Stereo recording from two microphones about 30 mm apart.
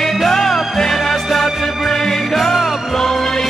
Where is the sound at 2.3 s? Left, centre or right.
Centre.